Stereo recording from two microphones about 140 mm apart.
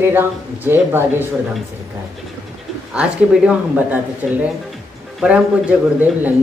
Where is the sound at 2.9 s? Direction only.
5° right (ahead or behind).